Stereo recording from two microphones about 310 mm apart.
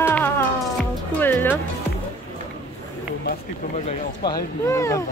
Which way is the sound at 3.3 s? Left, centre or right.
Left.